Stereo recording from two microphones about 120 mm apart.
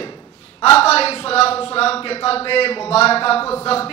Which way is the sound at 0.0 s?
45° left (ahead or behind).